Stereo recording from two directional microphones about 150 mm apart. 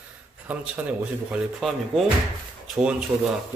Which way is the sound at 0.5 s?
10° right (ahead or behind).